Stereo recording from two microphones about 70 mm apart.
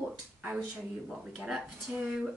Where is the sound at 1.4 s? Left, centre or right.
Centre.